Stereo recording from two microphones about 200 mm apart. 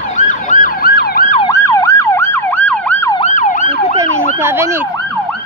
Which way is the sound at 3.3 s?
40° left (ahead or behind).